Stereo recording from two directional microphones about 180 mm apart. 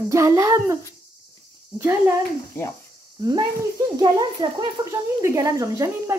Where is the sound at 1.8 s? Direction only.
10° right (ahead or behind).